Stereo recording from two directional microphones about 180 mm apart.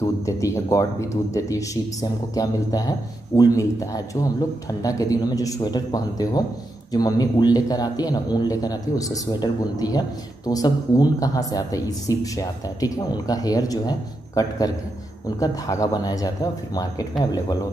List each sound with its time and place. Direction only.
0.0 s speech: 15° left (ahead or behind)